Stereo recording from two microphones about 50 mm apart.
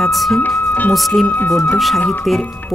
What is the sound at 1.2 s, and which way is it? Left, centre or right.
Speech, left.